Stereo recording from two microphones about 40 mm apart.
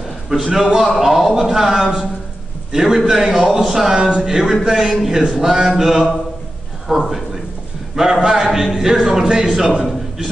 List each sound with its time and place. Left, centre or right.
0.5 s a man's voice: centre
3.3 s a man's voice: right
3.6 s a man's voice: centre